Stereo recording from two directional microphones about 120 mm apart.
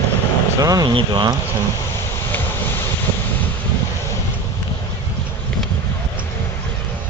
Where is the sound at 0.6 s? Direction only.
30° right (ahead or behind).